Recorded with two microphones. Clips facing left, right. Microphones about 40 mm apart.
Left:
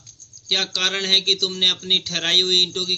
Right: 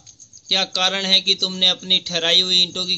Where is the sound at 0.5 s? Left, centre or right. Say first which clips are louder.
Right 2 dB; right.